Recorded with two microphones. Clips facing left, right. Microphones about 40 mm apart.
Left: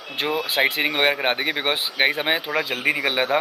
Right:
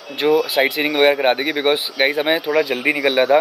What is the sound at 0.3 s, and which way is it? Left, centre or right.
Speech, centre.